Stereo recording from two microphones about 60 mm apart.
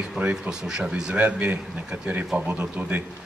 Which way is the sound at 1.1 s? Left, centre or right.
Right.